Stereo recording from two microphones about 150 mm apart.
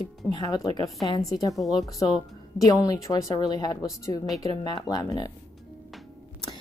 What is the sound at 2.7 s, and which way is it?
A woman's voice, 20° left (ahead or behind).